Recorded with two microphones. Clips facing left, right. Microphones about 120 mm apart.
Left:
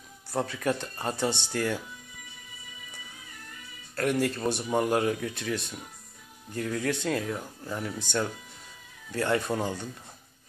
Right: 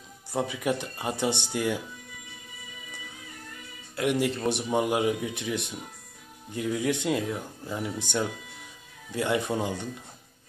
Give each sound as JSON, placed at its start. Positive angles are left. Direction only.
{"t": 0.3, "sound": "speech", "side_deg": -15}
{"t": 3.9, "sound": "speech", "side_deg": -15}